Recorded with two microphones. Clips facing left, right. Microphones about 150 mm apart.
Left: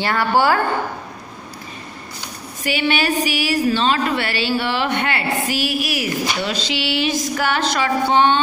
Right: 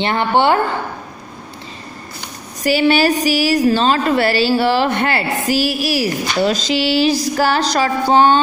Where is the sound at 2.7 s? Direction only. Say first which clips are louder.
Right 6 dB; 35° right (ahead or behind).